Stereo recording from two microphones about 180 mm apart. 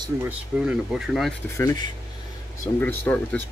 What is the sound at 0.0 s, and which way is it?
Speech, 10° right (ahead or behind).